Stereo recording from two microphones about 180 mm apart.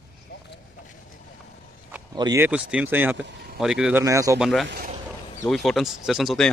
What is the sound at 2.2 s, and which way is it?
Speech, 20° right (ahead or behind).